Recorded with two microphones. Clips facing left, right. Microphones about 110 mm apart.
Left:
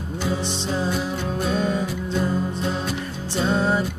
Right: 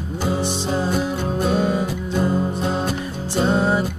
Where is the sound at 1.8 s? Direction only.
45° right (ahead or behind).